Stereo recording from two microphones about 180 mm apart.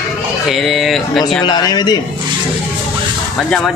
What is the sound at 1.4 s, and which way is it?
Speech, 25° left (ahead or behind).